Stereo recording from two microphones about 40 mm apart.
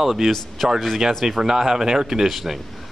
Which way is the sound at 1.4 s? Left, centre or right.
Centre.